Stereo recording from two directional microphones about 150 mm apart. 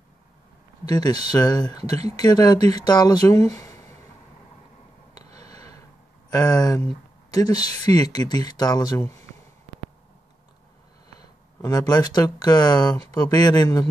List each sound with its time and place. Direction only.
0.8 s speech: 25° left (ahead or behind)
5.1 s a sound: 45° right (ahead or behind)
5.5 s a sound: 25° left (ahead or behind)
6.3 s speech: 25° left (ahead or behind)
7.8 s speech: 25° left (ahead or behind)
11.6 s speech: 25° left (ahead or behind)